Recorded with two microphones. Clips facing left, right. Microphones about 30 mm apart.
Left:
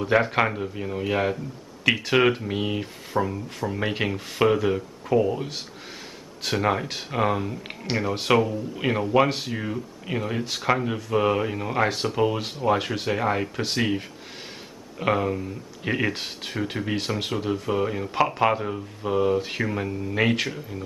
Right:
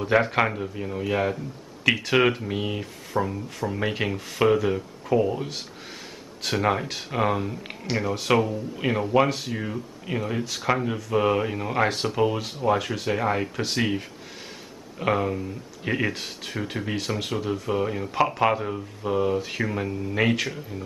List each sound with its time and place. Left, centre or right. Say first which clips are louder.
0.0 s speech: even; centre
12.7 s speech: left 1 dB; centre
13.1 s speech: even; centre
16.1 s speech: left 2 dB; centre
16.5 s speech: left 2 dB; centre